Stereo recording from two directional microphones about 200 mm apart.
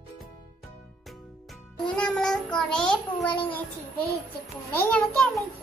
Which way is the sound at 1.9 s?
5° left (ahead or behind).